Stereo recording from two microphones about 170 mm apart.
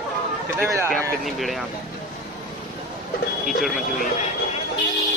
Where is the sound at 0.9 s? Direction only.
5° left (ahead or behind).